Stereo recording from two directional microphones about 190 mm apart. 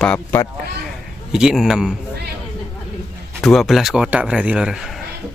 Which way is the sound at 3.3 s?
Centre (ahead or behind).